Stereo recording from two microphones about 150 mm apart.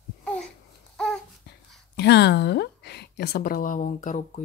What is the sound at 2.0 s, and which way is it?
A woman's voice, 90° left.